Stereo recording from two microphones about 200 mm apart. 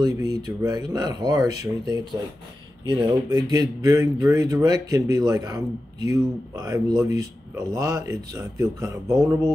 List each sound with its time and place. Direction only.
0.0 s speech: 20° right (ahead or behind)
2.8 s speech: 20° right (ahead or behind)